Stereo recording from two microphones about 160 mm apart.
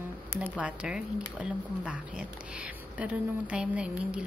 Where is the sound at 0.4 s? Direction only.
10° right (ahead or behind).